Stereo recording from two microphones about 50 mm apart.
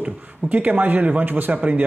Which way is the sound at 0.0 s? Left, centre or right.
Right.